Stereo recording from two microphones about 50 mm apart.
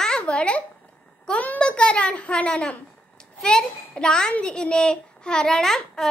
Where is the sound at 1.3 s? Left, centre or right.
Centre.